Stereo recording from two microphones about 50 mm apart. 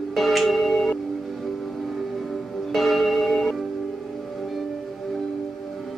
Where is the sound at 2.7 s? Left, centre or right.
Centre.